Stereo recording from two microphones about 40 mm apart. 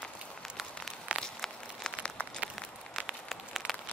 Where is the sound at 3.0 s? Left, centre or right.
Centre.